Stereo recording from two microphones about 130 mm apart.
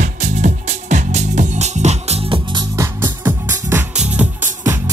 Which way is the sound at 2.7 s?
20° right (ahead or behind).